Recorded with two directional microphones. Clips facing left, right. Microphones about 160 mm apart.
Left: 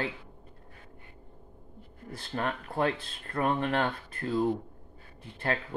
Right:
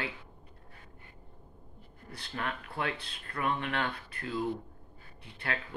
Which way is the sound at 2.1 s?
40° left (ahead or behind).